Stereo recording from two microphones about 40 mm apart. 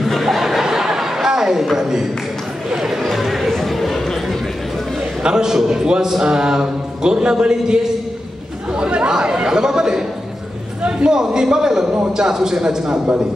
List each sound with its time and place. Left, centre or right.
0.0 s chuckle: centre
1.8 s a man's voice: centre
2.7 s chatter: centre
3.0 s a sound: centre
5.2 s a man's voice: centre
10.8 s a sound: right
11.1 s a man's voice: centre